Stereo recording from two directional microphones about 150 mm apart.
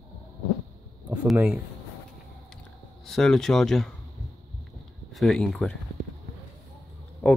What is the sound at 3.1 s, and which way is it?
Speech, 5° left (ahead or behind).